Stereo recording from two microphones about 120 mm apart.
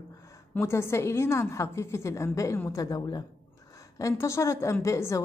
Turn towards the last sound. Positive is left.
turn(degrees=25)  # may be behind; listen again after turning